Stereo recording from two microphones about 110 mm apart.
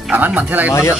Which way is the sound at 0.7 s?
25° left (ahead or behind).